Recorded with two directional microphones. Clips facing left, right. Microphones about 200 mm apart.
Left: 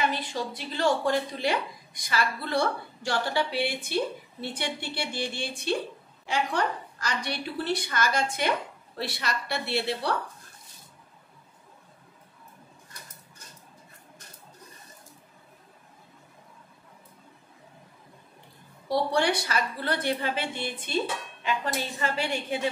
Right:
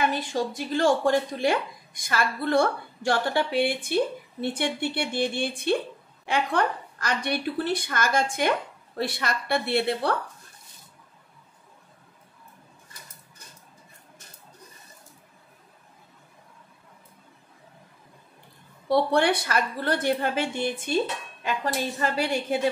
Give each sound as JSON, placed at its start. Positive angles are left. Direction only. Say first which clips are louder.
{"t": 0.1, "sound": "speech", "louder": "right 4 dB", "side_deg": -45}
{"t": 18.9, "sound": "speech", "louder": "right 4 dB", "side_deg": -60}